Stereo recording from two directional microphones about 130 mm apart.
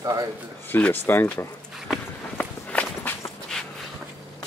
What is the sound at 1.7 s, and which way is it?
Walk, 5° right (ahead or behind).